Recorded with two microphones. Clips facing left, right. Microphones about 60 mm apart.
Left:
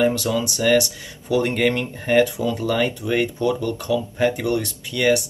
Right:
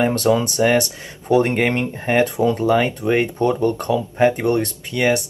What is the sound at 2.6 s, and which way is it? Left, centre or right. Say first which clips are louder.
Speech: right 4 dB; right.